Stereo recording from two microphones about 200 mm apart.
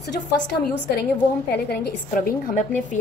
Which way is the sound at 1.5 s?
50° left (ahead or behind).